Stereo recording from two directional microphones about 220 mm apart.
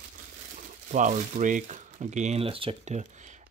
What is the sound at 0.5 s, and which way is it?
Speech, 35° right (ahead or behind).